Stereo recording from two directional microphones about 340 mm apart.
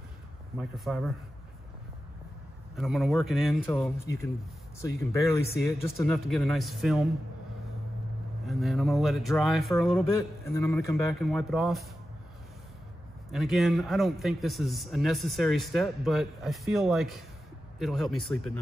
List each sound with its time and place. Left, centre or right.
0.6 s a man's voice: centre
2.7 s a man's voice: centre
5.6 s a man's voice: centre
8.5 s a man's voice: centre
13.3 s a man's voice: centre